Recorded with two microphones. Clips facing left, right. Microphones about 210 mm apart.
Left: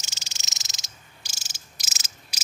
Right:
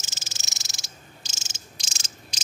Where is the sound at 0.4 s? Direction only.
20° left (ahead or behind).